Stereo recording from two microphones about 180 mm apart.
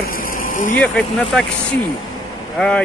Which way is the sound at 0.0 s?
50° left (ahead or behind).